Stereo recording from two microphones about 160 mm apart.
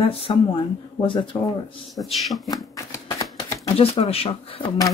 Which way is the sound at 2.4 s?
20° left (ahead or behind).